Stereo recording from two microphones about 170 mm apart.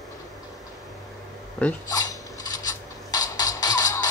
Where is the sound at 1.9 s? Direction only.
20° left (ahead or behind).